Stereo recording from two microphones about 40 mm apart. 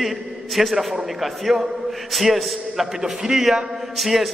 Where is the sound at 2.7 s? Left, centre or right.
Centre.